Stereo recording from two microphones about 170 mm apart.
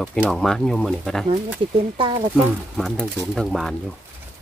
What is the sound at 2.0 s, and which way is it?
Speech, 25° right (ahead or behind).